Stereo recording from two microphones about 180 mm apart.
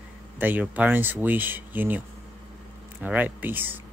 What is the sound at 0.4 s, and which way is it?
Speech, 10° right (ahead or behind).